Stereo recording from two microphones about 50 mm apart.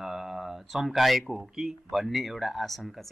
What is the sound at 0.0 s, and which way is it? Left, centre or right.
Speech, centre.